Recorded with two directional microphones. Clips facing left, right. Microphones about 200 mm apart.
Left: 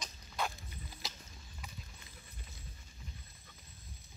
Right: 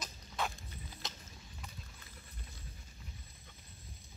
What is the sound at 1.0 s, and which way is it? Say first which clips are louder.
Horse: even; centre (ahead or behind).